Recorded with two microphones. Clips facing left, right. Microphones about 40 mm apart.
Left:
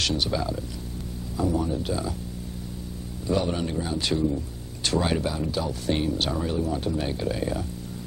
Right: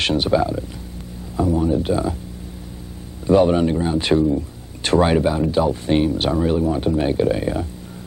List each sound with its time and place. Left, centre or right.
0.0 s speech: right
3.3 s speech: right
4.2 s speech: right